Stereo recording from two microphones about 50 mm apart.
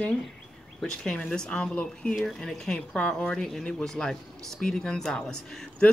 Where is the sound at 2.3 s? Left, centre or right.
Centre.